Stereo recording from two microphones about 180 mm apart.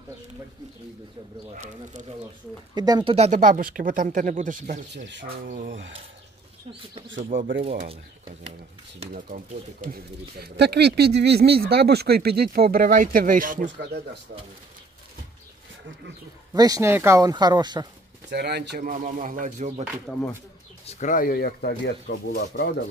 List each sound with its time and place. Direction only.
2.7 s speech: 25° right (ahead or behind); by 4.8 s 45° right (ahead or behind)
4.9 s speech: 65° right (ahead or behind)
7.3 s speech: 90° right
9.1 s speech: 50° right (ahead or behind)
16.5 s speech: 20° right (ahead or behind)
18.3 s speech: 65° right (ahead or behind)
18.8 s speech: 45° right (ahead or behind)
20.8 s speech: 40° left (ahead or behind); by 22.8 s 70° left (ahead or behind)